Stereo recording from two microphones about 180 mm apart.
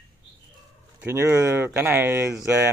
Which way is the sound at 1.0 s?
15° right (ahead or behind).